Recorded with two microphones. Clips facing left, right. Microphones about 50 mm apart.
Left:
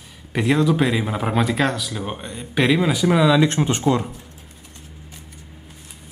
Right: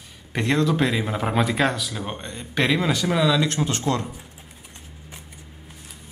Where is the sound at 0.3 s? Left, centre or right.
Centre.